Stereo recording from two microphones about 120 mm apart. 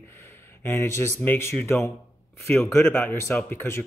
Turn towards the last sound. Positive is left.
turn(degrees=20)  # may be behind; listen again after turning